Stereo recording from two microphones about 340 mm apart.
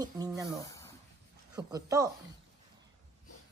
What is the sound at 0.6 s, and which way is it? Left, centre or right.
Speech, centre.